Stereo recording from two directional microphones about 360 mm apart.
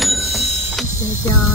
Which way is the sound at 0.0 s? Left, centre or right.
Centre.